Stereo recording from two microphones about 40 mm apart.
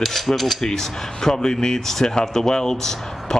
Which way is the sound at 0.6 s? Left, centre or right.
Centre.